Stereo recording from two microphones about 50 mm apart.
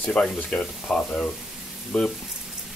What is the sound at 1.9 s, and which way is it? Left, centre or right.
Speech, centre.